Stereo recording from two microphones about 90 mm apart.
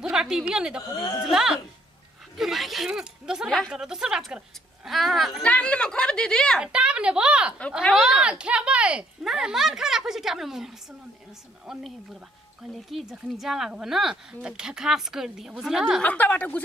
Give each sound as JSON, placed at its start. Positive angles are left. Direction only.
{"t": 0.0, "sound": "a woman's voice", "side_deg": -10}
{"t": 3.4, "sound": "speech", "side_deg": 5}
{"t": 3.7, "sound": "speech", "side_deg": -5}
{"t": 5.4, "sound": "speech", "side_deg": 15}
{"t": 6.6, "sound": "speech", "side_deg": -10}
{"t": 7.8, "sound": "speech", "side_deg": 10}
{"t": 8.2, "sound": "speech", "side_deg": -10}
{"t": 16.0, "sound": "speech", "side_deg": 15}